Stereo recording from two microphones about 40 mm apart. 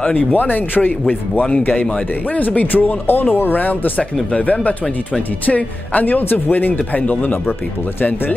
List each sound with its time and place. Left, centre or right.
0.1 s speech: left
4.3 s speech: left